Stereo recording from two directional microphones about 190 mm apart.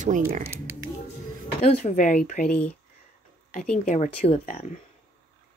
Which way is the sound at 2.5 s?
10° left (ahead or behind).